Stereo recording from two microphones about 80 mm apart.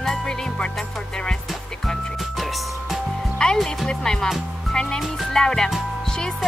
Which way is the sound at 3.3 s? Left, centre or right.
Centre.